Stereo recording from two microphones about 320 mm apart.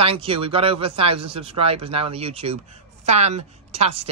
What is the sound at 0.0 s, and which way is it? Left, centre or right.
A woman's voice, centre.